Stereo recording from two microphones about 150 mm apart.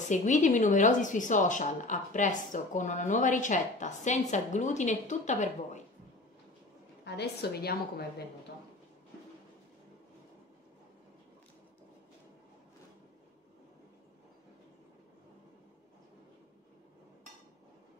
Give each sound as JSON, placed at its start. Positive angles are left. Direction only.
{"t": 0.0, "sound": "speech", "side_deg": 55}
{"t": 7.2, "sound": "a woman's voice", "side_deg": 90}